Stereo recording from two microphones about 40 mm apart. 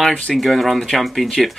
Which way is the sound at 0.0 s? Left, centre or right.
Centre.